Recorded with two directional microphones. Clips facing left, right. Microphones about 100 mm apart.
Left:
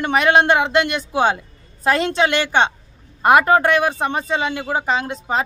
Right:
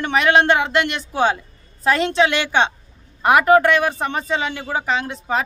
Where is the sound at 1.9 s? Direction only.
45° left (ahead or behind).